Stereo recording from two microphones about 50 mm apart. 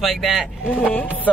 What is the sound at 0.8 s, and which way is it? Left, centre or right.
Speech, left.